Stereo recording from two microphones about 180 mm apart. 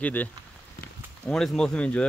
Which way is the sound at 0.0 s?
10° left (ahead or behind).